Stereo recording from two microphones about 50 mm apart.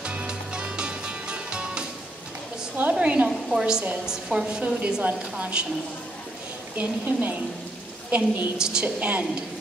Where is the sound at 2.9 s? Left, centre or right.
Right.